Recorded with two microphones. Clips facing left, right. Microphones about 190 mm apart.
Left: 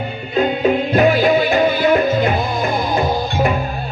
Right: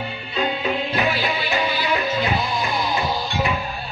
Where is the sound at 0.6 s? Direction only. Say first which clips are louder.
Left 9 dB; 45° left (ahead or behind).